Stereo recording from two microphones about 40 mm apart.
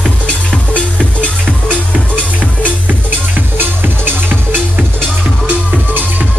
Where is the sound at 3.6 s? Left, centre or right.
Right.